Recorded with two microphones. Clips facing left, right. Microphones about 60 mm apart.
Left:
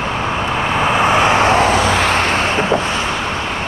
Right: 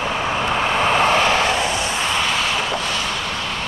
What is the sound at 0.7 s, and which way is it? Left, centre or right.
Vehicle, centre.